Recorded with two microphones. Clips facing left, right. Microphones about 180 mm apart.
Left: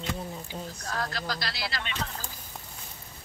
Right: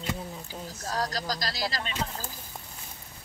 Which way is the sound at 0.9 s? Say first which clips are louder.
Right 3 dB; 40° right (ahead or behind).